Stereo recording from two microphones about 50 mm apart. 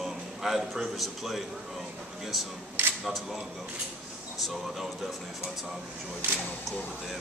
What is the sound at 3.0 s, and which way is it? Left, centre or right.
Speech, centre.